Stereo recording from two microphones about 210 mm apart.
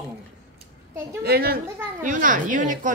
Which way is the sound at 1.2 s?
45° right (ahead or behind).